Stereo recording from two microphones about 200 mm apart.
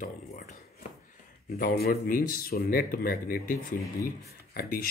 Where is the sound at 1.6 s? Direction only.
50° left (ahead or behind).